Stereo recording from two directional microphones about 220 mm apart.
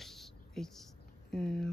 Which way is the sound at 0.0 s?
Centre (ahead or behind).